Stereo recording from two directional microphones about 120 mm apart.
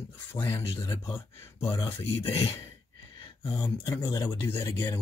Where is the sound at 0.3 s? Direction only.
20° left (ahead or behind).